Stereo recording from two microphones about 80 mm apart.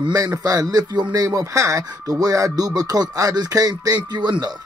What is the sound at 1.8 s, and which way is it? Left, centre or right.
Speech, right.